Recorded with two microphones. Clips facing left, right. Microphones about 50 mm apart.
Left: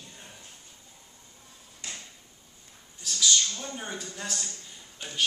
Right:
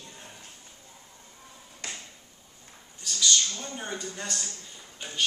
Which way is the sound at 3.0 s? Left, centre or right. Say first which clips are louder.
Even; centre.